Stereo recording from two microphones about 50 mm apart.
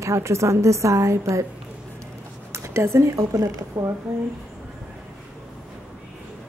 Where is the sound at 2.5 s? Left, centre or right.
Right.